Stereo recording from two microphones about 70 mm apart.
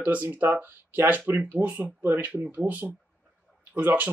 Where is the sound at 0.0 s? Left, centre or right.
Right.